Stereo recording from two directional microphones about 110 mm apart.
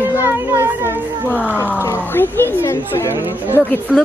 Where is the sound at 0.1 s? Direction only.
25° left (ahead or behind).